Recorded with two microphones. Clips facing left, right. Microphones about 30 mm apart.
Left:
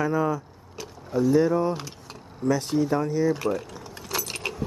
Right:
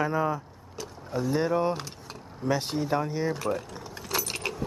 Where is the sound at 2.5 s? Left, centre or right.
Right.